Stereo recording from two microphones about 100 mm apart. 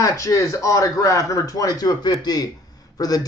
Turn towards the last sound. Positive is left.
turn(degrees=40)  # may be behind; listen again after turning